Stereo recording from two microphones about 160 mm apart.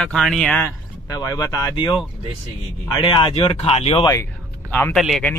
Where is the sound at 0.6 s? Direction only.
20° left (ahead or behind).